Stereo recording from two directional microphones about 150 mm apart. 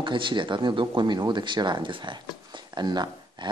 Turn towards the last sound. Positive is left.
turn(degrees=-30)  # may be behind; listen again after turning